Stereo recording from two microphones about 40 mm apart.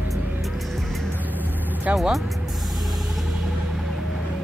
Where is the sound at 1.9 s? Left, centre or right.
Centre.